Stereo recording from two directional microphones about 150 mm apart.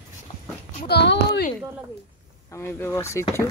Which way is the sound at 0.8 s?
90° left.